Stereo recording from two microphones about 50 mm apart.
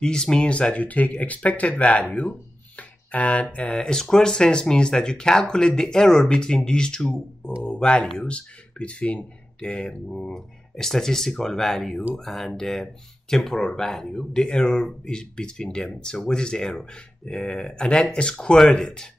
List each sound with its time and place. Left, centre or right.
0.0 s speech: centre